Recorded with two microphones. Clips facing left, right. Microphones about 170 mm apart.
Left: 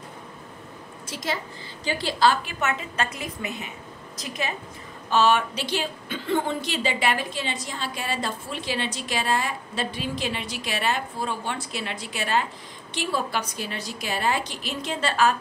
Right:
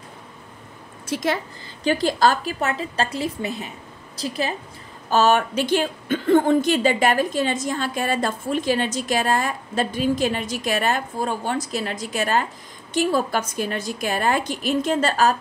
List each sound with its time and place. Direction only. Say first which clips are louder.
1.1 s a woman's voice: right 7 dB; 55° right (ahead or behind); by 4.6 s 35° right (ahead or behind)
5.1 s a woman's voice: right 3 dB; 45° right (ahead or behind)